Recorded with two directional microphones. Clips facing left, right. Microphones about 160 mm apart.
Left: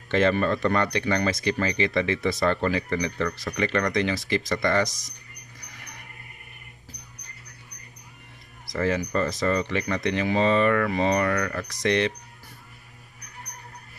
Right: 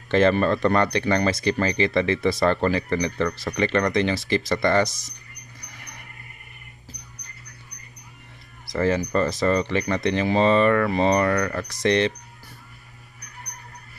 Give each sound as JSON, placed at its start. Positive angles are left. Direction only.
{"t": 0.1, "sound": "speech", "side_deg": -35}
{"t": 8.6, "sound": "speech", "side_deg": -30}